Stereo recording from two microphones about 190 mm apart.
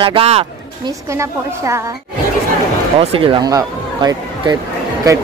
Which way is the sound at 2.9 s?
30° right (ahead or behind).